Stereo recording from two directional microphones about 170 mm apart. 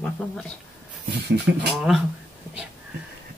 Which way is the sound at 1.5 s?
80° right.